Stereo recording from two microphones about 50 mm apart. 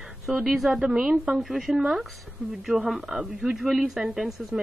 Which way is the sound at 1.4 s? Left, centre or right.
Centre.